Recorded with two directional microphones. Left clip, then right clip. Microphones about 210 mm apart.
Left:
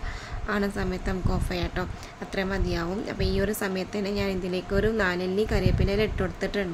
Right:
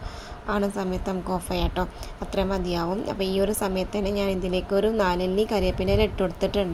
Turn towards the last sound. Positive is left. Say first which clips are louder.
# right 4 dB
turn(degrees=-5)  # may be behind; listen again after turning